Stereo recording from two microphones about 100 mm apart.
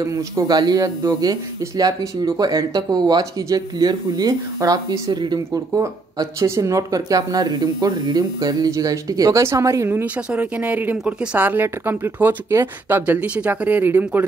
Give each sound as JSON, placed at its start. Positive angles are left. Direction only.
{"t": 0.0, "sound": "speech", "side_deg": -40}
{"t": 10.3, "sound": "a woman's voice", "side_deg": -15}